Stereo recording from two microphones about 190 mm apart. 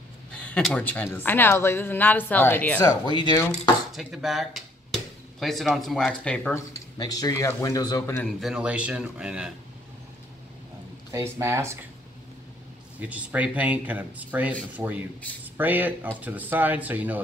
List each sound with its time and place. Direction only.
0.3 s a woman's voice: 5° left (ahead or behind)
2.8 s speech: 20° left (ahead or behind)
3.9 s speech: centre (ahead or behind)
6.5 s a woman's voice: 15° left (ahead or behind)
8.4 s speech: 5° right (ahead or behind)
11.1 s speech: 15° right (ahead or behind)
13.0 s speech: 5° right (ahead or behind)